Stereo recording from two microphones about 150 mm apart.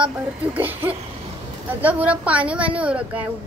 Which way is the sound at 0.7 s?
15° right (ahead or behind).